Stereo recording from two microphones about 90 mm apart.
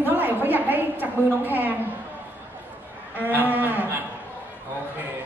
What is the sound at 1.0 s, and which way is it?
Speech, 20° right (ahead or behind).